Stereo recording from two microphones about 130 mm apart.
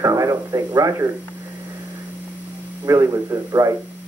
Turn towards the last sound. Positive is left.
turn(degrees=-25)  # may be behind; listen again after turning